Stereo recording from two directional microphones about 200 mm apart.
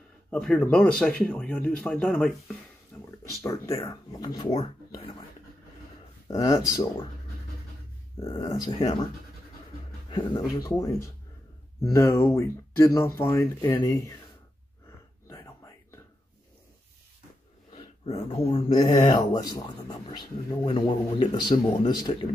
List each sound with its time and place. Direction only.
0.3 s speech: 5° left (ahead or behind); by 5.1 s 25° left (ahead or behind)
6.2 s speech: 15° left (ahead or behind)
8.3 s speech: 15° left (ahead or behind)
10.0 s speech: 20° left (ahead or behind)
15.2 s whispering: 15° left (ahead or behind)
17.7 s a sound: 30° left (ahead or behind)
18.5 s speech: 25° left (ahead or behind)